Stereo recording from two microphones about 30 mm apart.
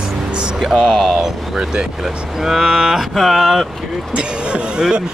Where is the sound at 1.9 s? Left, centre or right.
Centre.